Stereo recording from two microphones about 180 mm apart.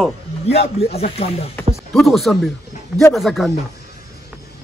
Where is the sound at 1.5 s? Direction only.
Centre (ahead or behind).